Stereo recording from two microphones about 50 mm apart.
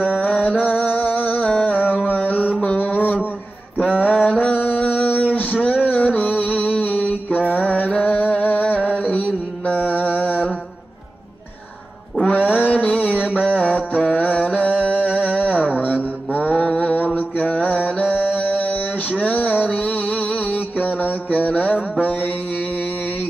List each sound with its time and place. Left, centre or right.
0.2 s music: left
2.0 s mantra: left
4.3 s a sound: left
7.3 s mantra: left
7.7 s music: left
12.3 s music: left
14.1 s mantra: left
16.9 s mantra: left